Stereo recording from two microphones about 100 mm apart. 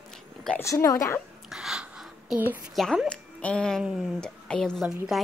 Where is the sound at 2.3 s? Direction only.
20° right (ahead or behind).